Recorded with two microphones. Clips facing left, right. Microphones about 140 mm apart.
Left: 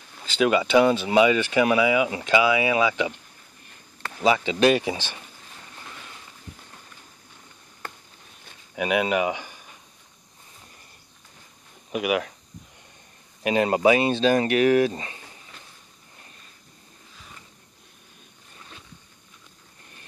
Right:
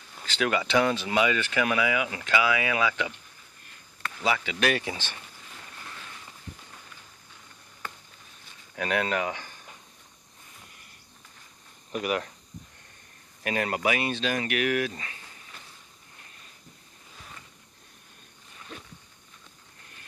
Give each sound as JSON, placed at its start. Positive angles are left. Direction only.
{"t": 0.4, "sound": "speech", "side_deg": 20}
{"t": 8.7, "sound": "speech", "side_deg": 15}
{"t": 11.9, "sound": "speech", "side_deg": 10}
{"t": 13.4, "sound": "speech", "side_deg": 20}